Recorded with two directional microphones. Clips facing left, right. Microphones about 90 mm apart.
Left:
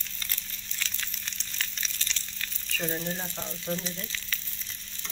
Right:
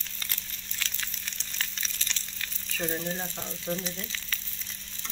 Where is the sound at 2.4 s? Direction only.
10° right (ahead or behind).